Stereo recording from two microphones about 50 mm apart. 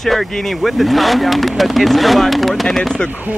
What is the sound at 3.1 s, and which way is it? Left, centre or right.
Speech, right.